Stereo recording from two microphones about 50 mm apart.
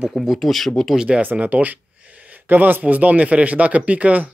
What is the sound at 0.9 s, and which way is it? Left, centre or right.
Speech, centre.